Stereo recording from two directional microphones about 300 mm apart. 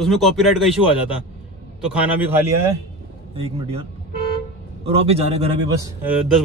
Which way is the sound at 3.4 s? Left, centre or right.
Centre.